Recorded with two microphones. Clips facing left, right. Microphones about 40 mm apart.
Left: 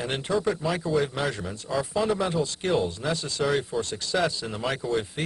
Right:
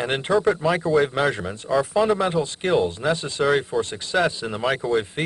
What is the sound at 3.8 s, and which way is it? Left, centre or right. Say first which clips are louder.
Speech: right 4 dB; right.